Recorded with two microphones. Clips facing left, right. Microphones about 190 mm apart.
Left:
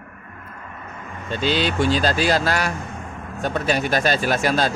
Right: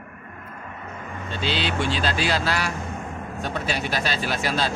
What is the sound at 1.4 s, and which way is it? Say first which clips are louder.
Speech: left 5 dB; 45° left (ahead or behind).